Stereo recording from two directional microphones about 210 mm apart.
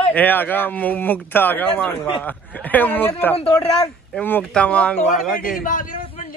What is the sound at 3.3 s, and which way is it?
Speech, 25° left (ahead or behind).